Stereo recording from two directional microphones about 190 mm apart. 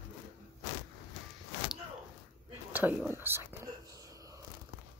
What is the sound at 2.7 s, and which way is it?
Whispering, 10° right (ahead or behind).